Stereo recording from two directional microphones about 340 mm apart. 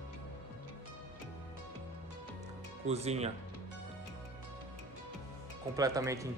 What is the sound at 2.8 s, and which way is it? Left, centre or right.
Speech, centre.